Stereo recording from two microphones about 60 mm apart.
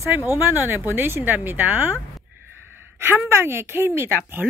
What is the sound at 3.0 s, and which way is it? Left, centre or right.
Speech, right.